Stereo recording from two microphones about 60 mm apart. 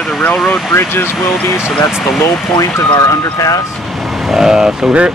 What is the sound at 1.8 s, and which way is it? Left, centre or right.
Speech, left.